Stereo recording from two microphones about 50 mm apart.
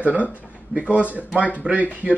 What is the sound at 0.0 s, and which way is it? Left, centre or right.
Speech, right.